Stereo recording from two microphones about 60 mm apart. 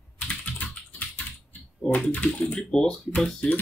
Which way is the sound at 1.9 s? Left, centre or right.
Left.